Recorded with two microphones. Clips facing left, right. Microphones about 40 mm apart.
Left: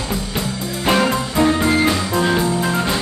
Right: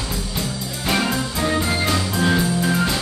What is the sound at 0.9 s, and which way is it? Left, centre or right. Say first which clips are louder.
Music: left 4 dB; left.